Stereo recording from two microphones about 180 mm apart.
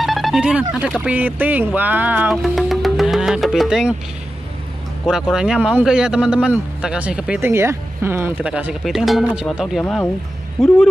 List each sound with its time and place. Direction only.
0.0 s speech: centre (ahead or behind)
5.0 s speech: 5° right (ahead or behind)